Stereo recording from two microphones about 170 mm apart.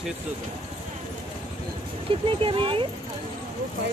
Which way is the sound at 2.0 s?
30° right (ahead or behind).